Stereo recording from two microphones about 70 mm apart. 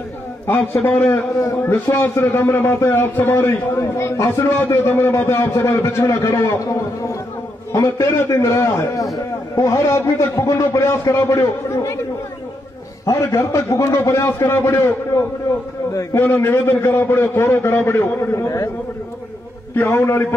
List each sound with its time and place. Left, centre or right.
0.6 s a man's voice: left
0.9 s a man's voice: left
8.3 s a man's voice: left
13.2 s a man's voice: left
15.9 s a man's voice: left
16.3 s a man's voice: left
19.7 s a man's voice: left